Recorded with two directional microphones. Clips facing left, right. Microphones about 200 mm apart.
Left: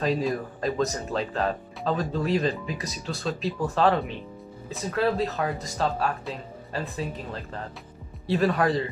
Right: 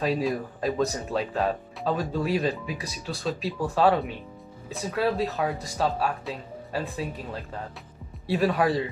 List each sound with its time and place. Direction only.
0.0 s speech: 5° right (ahead or behind)